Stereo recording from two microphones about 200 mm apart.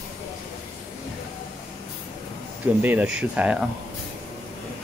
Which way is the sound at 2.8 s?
10° right (ahead or behind).